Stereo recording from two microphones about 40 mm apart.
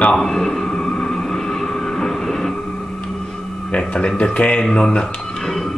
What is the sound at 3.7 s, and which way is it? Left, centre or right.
Speech, left.